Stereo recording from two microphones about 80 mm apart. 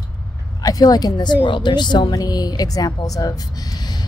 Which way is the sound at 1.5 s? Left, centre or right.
Left.